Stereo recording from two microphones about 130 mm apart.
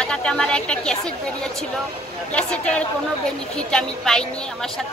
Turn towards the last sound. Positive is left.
turn(degrees=5)  # may be behind; listen again after turning